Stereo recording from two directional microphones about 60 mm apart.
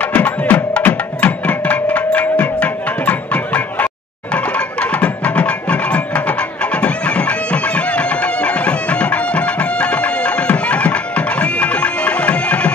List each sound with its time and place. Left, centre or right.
0.0 s music: left